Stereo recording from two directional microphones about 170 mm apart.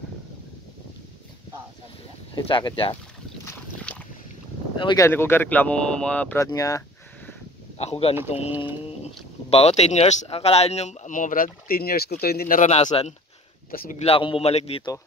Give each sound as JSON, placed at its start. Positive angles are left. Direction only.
{"t": 2.3, "sound": "speech", "side_deg": 25}
{"t": 3.4, "sound": "boat", "side_deg": 10}
{"t": 4.7, "sound": "speech", "side_deg": 25}
{"t": 5.0, "sound": "speech", "side_deg": 15}
{"t": 6.4, "sound": "speech", "side_deg": 20}
{"t": 7.7, "sound": "speech", "side_deg": 35}
{"t": 9.5, "sound": "speech", "side_deg": 35}
{"t": 12.8, "sound": "speech", "side_deg": 35}
{"t": 13.7, "sound": "speech", "side_deg": 55}
{"t": 14.0, "sound": "speech", "side_deg": 30}